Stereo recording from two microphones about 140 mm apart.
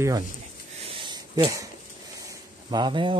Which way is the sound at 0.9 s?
30° right (ahead or behind).